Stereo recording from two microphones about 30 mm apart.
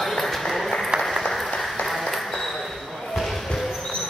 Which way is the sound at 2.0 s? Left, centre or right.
Centre.